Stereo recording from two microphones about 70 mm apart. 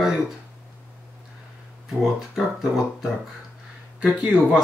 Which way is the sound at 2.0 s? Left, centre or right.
Centre.